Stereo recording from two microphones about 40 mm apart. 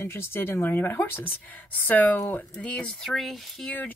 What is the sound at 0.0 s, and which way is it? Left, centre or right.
Speech, left.